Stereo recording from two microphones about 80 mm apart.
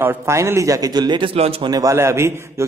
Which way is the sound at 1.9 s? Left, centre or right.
Right.